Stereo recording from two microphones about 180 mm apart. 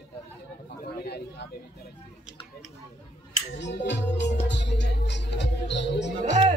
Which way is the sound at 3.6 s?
75° left (ahead or behind).